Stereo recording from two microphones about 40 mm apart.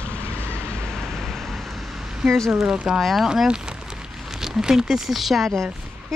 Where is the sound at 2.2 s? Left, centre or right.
Centre.